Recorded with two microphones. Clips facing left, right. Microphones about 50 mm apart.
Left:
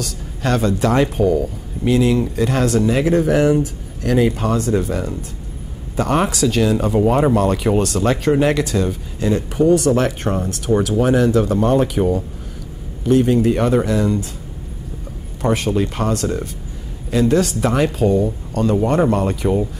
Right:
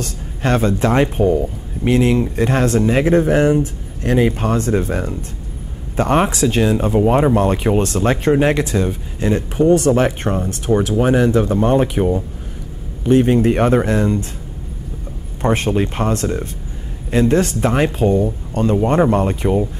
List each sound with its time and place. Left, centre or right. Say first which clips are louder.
0.0 s a sound: right 1 dB; right
1.1 s speech: right 1 dB; right
9.9 s speech: right 2 dB; right
13.0 s speech: right 1 dB; right
15.4 s speech: right 1 dB; right